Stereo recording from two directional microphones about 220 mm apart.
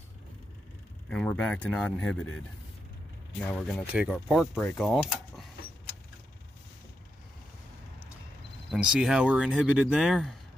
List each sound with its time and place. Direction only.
1.1 s speech: 5° left (ahead or behind)
3.4 s speech: 5° left (ahead or behind)
8.7 s speech: 5° right (ahead or behind)